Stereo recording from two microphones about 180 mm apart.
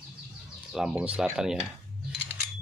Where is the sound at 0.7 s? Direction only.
5° right (ahead or behind).